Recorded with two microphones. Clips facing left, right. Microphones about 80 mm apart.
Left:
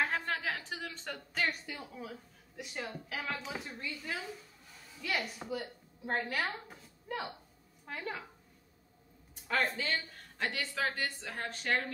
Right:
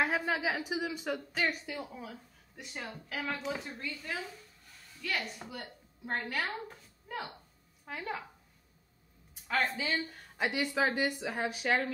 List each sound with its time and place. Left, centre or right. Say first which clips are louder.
0.0 s a woman's voice: right 3 dB; centre
9.3 s speech: right 1 dB; centre